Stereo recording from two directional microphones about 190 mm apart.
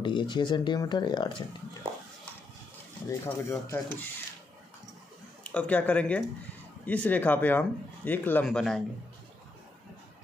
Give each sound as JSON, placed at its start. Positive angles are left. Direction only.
{"t": 0.0, "sound": "speech", "side_deg": 25}
{"t": 3.1, "sound": "speech", "side_deg": 15}
{"t": 5.4, "sound": "speech", "side_deg": 5}